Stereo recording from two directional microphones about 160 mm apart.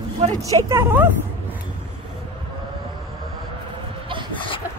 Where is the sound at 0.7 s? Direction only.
15° right (ahead or behind).